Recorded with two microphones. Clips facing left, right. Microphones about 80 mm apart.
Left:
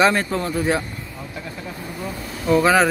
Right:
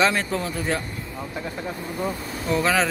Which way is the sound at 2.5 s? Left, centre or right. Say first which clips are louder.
Left 6 dB; centre.